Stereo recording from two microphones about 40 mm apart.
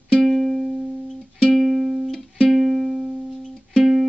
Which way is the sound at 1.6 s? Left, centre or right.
Centre.